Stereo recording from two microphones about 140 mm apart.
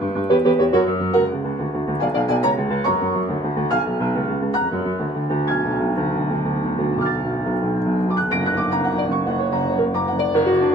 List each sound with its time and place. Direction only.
0.3 s keyboard: 30° left (ahead or behind)